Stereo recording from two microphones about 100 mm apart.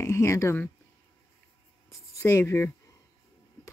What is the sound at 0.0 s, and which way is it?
Speech, 30° left (ahead or behind).